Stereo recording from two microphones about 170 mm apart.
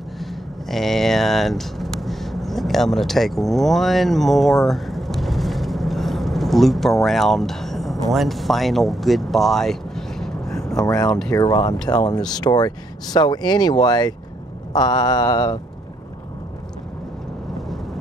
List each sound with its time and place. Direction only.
0.2 s a sound: centre (ahead or behind)
11.1 s speech: 5° left (ahead or behind)
11.3 s speech: 25° left (ahead or behind)